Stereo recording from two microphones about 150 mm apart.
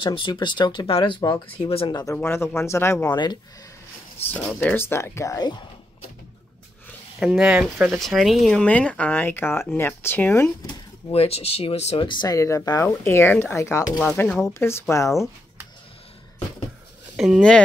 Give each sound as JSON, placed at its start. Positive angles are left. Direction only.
{"t": 0.0, "sound": "speech", "side_deg": 35}
{"t": 2.1, "sound": "speech", "side_deg": 15}
{"t": 4.6, "sound": "speech", "side_deg": 15}
{"t": 7.2, "sound": "speech", "side_deg": -5}
{"t": 10.7, "sound": "speech", "side_deg": 40}
{"t": 12.1, "sound": "speech", "side_deg": 25}
{"t": 17.2, "sound": "speech", "side_deg": 0}